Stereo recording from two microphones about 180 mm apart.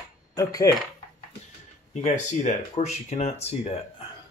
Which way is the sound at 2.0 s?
40° left (ahead or behind).